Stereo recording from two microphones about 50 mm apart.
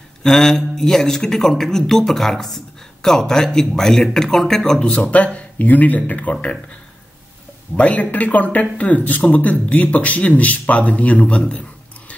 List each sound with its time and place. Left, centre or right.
0.2 s speech: centre
5.0 s speech: left
7.7 s speech: left